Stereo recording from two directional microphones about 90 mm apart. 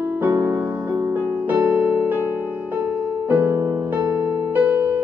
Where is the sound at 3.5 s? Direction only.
30° right (ahead or behind).